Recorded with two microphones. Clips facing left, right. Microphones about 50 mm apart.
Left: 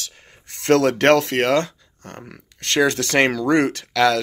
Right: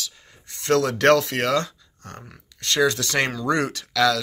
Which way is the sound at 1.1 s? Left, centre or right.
Left.